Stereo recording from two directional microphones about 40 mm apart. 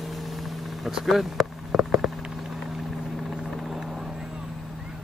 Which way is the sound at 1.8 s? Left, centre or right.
Right.